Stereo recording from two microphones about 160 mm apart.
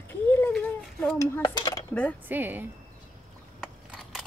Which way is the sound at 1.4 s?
25° left (ahead or behind).